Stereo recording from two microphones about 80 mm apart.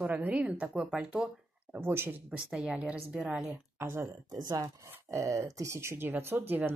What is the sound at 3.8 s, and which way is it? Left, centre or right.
Speech, right.